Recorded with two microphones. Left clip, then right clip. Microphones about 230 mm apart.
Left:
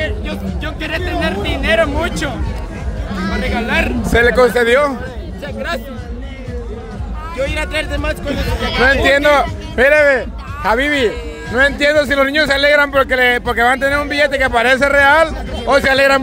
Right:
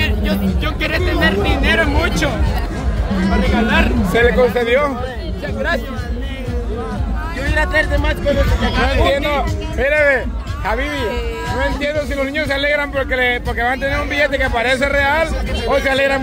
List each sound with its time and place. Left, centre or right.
0.0 s music: right
0.7 s music: centre
3.5 s a man's voice: left
7.4 s a man's voice: left
8.6 s speech: left
11.5 s a man's voice: left